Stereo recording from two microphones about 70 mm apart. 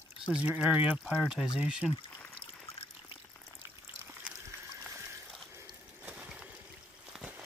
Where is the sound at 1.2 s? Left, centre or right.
Centre.